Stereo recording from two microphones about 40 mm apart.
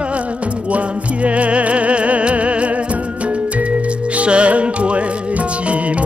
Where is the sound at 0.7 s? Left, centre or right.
Right.